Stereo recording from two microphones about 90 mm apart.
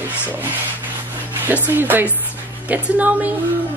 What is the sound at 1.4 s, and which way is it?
A man's voice, 20° right (ahead or behind).